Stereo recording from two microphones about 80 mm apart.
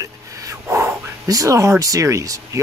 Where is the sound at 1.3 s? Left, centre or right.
Right.